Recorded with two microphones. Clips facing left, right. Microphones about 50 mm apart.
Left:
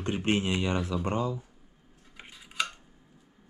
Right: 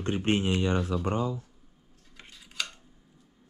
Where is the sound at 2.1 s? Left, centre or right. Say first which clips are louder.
Left 4 dB; centre.